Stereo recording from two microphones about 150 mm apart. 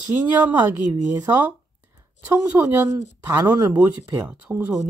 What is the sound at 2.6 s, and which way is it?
Speech, 15° right (ahead or behind).